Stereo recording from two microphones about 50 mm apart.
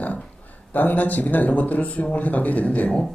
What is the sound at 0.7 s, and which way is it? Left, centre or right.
A man's voice, left.